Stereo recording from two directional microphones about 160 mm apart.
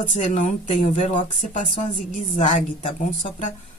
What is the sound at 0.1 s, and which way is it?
A woman's voice, 40° left (ahead or behind).